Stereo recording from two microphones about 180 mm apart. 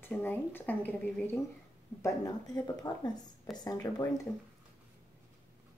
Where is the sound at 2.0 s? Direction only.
20° left (ahead or behind).